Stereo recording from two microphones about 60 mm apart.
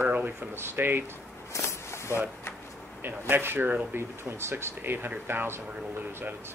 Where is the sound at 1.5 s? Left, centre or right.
Left.